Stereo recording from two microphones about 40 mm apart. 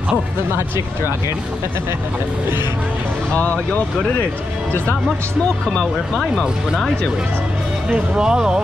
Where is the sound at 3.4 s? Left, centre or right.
Left.